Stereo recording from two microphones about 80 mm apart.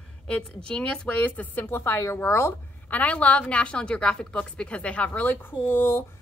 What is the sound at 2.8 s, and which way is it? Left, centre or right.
A woman's voice, centre.